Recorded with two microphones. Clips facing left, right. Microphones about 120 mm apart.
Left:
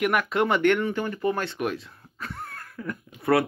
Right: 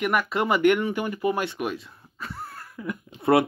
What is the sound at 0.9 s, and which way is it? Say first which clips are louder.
Speech: right 1 dB; 15° right (ahead or behind).